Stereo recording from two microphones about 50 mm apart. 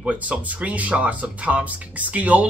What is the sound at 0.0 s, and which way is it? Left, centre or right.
Speech, right.